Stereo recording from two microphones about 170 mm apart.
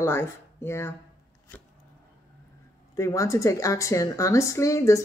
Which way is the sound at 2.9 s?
15° left (ahead or behind).